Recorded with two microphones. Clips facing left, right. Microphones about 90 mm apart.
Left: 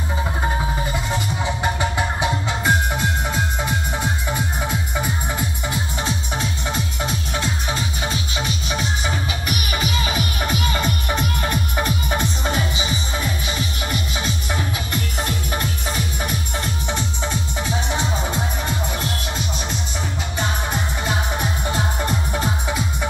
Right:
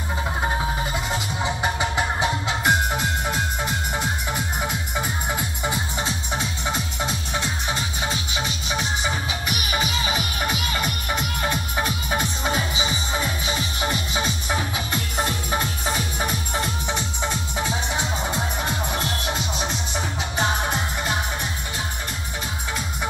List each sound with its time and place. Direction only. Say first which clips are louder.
1.4 s music: even; 5° right (ahead or behind)
9.7 s music: even; 15° right (ahead or behind)
10.4 s music: left 4 dB; 5° right (ahead or behind)
14.1 s music: even; 10° right (ahead or behind)